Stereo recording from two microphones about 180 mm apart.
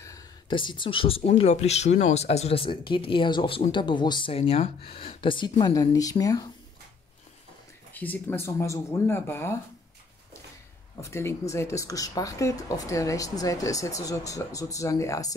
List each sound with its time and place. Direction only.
0.0 s speech: 20° left (ahead or behind)
7.9 s speech: 10° left (ahead or behind)
11.0 s speech: 15° left (ahead or behind)